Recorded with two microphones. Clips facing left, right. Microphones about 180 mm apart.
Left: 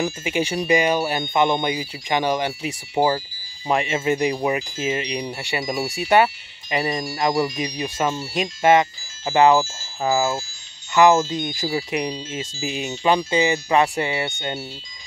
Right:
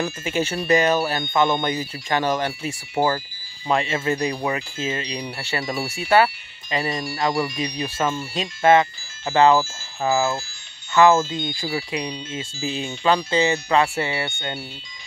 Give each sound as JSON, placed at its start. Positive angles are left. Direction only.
{"t": 0.0, "sound": "speech", "side_deg": 15}